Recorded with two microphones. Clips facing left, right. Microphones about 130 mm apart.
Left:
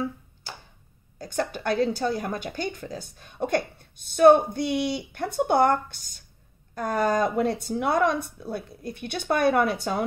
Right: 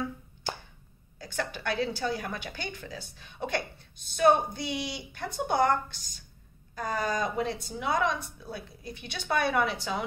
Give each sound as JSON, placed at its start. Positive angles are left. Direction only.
{"t": 1.1, "sound": "a woman's voice", "side_deg": 40}